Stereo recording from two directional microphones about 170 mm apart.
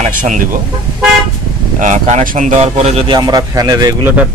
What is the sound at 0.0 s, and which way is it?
Speech, 50° right (ahead or behind).